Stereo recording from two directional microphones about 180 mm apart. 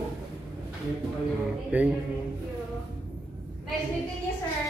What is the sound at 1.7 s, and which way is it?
Speech, 10° right (ahead or behind).